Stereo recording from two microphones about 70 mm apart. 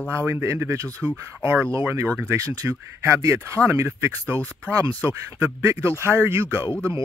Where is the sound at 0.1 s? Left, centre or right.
Right.